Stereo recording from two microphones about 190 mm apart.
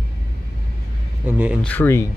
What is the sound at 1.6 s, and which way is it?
Speech, 10° left (ahead or behind).